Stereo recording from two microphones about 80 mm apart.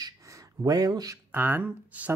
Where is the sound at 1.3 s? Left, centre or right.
Right.